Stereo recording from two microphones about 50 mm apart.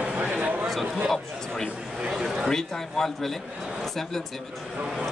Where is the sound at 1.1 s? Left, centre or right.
Centre.